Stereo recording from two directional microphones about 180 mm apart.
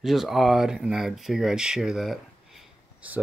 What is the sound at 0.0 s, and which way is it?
Speech, centre (ahead or behind).